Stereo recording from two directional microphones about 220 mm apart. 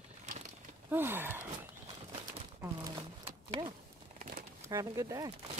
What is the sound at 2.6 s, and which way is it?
Crumpling, 20° right (ahead or behind).